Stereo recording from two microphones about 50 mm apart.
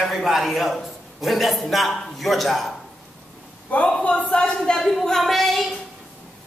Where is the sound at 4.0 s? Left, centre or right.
Left.